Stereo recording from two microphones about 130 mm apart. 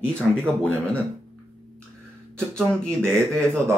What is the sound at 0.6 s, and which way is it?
Speech, 10° left (ahead or behind).